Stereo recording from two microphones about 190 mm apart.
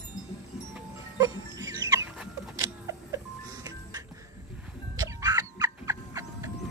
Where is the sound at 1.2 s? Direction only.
20° right (ahead or behind).